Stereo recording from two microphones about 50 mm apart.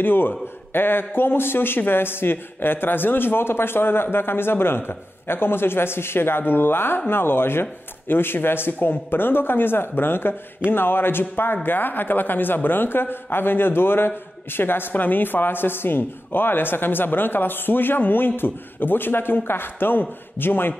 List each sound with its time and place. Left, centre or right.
0.0 s a man's voice: left